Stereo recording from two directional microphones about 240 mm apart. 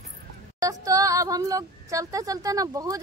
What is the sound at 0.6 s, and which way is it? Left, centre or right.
Speech, centre.